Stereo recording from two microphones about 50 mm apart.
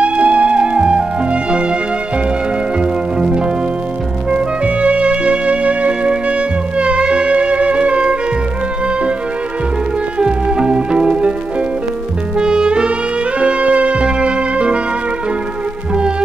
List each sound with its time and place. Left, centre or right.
0.0 s music: right
3.2 s music: centre
10.1 s music: centre
12.4 s music: centre